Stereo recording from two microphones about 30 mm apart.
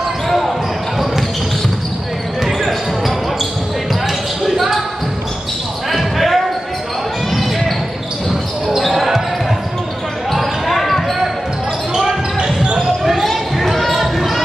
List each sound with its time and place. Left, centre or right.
4.4 s basketball bounce: centre
5.9 s basketball bounce: centre
8.3 s basketball bounce: centre
10.3 s basketball bounce: centre
11.9 s basketball bounce: centre
13.0 s basketball bounce: centre